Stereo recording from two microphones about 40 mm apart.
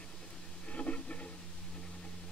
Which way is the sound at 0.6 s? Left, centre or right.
Left.